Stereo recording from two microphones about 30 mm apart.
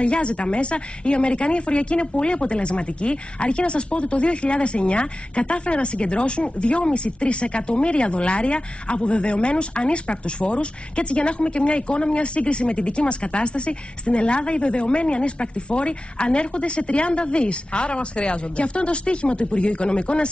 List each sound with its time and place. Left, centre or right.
0.0 s speech: left